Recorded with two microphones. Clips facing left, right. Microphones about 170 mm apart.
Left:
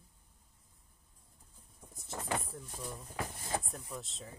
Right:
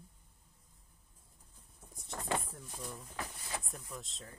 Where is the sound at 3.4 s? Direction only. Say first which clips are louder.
Left 6 dB; 45° left (ahead or behind).